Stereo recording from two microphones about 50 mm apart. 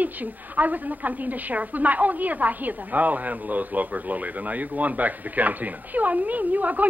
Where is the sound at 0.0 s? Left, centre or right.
Right.